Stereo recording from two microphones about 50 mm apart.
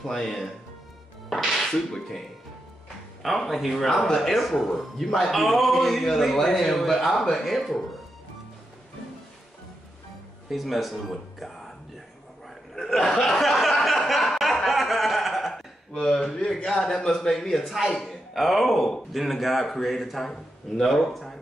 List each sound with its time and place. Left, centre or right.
0.0 s a man's voice: centre
1.3 s music: centre
3.2 s speech: centre
10.5 s speech: centre
12.7 s a sound: centre
14.4 s chuckle: centre
15.9 s a man's voice: centre